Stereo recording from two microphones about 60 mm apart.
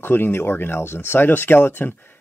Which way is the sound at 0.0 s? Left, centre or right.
Left.